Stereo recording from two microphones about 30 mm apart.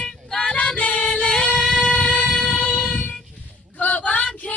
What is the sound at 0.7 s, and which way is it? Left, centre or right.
Music, left.